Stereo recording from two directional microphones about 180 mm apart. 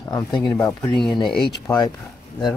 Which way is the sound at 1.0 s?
Centre (ahead or behind).